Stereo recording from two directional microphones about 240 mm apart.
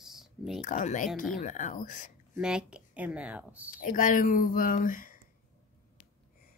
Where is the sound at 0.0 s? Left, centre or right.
Centre.